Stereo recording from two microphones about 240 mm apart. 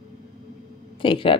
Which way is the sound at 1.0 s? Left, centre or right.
Left.